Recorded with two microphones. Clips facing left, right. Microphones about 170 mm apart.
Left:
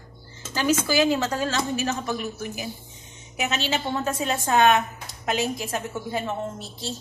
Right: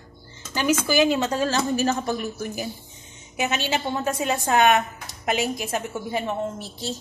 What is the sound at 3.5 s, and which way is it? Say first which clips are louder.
A woman's voice: left 1 dB; 15° right (ahead or behind).